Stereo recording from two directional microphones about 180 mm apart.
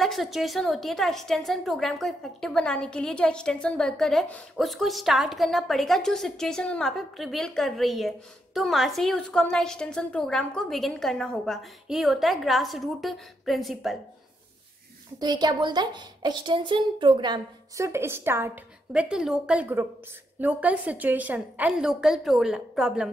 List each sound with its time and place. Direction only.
0.0 s a woman's voice: centre (ahead or behind)
15.1 s a woman's voice: 25° right (ahead or behind); by 23.0 s 5° right (ahead or behind)